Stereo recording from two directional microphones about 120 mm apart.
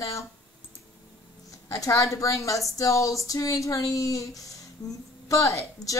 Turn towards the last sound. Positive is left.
turn(degrees=25)  # may be behind; listen again after turning